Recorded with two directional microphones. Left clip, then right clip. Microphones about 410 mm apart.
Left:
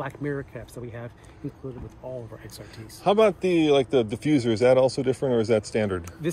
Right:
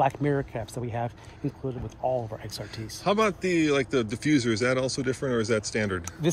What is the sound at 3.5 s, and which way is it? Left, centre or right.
Speech, centre.